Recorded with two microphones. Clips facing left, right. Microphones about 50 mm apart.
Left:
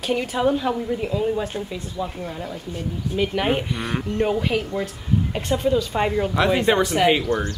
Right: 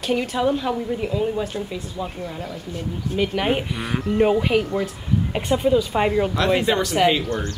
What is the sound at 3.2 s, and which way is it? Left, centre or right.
Speech, centre.